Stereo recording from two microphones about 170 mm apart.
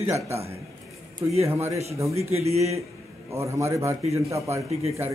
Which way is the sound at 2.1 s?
40° right (ahead or behind).